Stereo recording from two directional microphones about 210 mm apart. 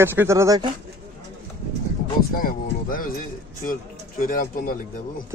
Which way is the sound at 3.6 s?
40° left (ahead or behind).